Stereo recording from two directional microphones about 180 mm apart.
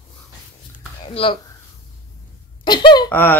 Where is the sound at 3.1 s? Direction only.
10° left (ahead or behind).